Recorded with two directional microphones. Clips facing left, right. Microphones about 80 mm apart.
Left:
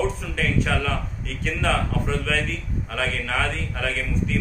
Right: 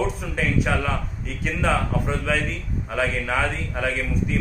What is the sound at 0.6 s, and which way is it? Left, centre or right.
Speech, centre.